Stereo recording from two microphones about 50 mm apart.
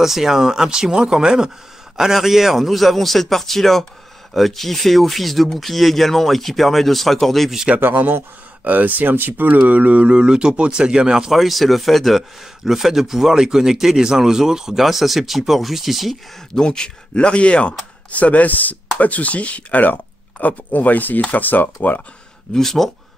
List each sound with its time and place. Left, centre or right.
0.0 s speech: centre
7.8 s speech: right
9.6 s speech: right
10.1 s speech: centre
11.3 s speech: centre
16.5 s speech: centre; by 22.0 s left
22.5 s speech: centre